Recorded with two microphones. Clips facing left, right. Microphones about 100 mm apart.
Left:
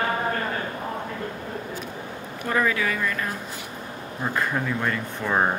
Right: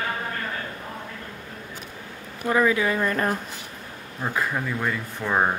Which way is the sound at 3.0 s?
40° right (ahead or behind).